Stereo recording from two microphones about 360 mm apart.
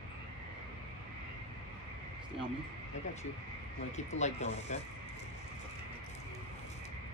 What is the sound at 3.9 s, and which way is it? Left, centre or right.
Speech, centre.